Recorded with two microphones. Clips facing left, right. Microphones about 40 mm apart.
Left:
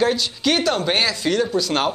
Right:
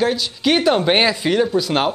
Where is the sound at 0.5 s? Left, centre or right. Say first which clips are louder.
Right 5 dB; centre.